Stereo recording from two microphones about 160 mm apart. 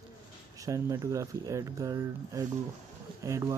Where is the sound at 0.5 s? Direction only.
20° right (ahead or behind).